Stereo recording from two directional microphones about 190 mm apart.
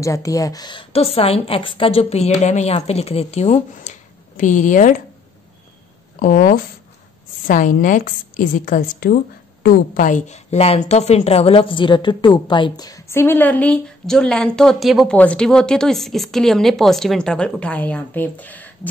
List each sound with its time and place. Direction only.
0.0 s a woman's voice: 15° left (ahead or behind); by 4.9 s 40° left (ahead or behind)
6.1 s a woman's voice: 45° left (ahead or behind); by 18.7 s 10° left (ahead or behind)